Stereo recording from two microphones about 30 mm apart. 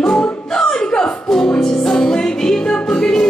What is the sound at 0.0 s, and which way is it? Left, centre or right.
Music, left.